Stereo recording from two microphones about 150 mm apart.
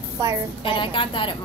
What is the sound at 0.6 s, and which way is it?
Speech, 35° left (ahead or behind).